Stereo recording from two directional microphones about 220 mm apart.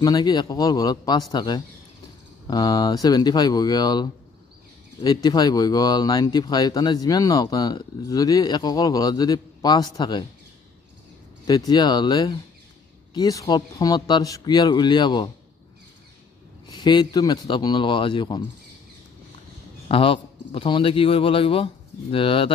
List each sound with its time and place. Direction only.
0.0 s speech: 15° left (ahead or behind)
11.4 s a man's voice: 20° left (ahead or behind)
16.6 s a man's voice: 20° left (ahead or behind)
19.9 s a man's voice: 25° left (ahead or behind)